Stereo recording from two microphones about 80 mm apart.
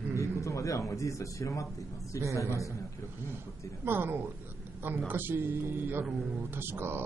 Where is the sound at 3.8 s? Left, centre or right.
Right.